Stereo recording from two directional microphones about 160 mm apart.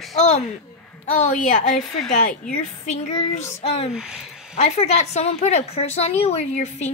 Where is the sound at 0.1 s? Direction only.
45° left (ahead or behind).